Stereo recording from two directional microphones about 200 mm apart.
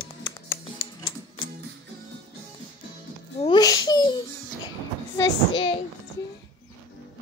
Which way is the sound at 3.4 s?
20° left (ahead or behind).